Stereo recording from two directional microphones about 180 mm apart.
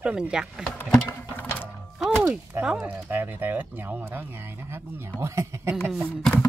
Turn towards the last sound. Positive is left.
turn(degrees=5)  # may be behind; listen again after turning